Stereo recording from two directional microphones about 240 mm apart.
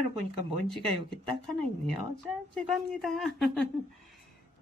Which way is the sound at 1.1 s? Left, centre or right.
Centre.